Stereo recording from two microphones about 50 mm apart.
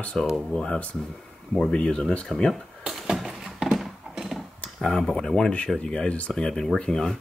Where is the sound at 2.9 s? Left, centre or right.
Centre.